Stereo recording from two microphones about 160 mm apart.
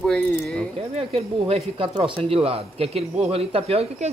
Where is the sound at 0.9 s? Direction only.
40° right (ahead or behind).